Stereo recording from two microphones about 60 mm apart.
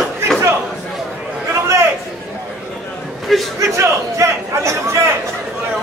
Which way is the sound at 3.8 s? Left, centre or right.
Right.